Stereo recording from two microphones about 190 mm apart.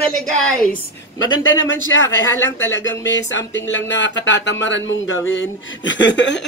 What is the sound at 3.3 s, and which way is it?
Speech, 80° left.